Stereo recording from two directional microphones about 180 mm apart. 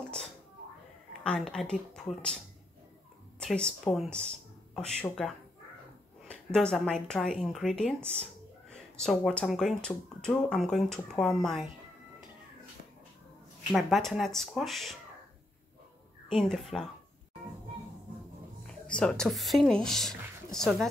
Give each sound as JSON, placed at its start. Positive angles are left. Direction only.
{"t": 1.2, "sound": "speech", "side_deg": 5}
{"t": 3.3, "sound": "speech", "side_deg": 5}
{"t": 5.2, "sound": "speech", "side_deg": 0}
{"t": 8.0, "sound": "speech", "side_deg": -35}
{"t": 8.6, "sound": "speech", "side_deg": 5}
{"t": 13.7, "sound": "speech", "side_deg": 0}
{"t": 16.3, "sound": "speech", "side_deg": 0}
{"t": 18.9, "sound": "speech", "side_deg": 5}